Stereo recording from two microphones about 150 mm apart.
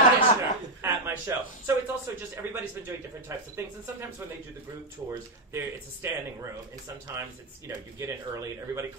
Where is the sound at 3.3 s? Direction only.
20° right (ahead or behind).